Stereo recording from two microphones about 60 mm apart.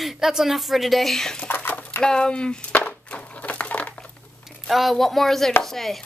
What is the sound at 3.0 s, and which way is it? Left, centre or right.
Crumpling, left.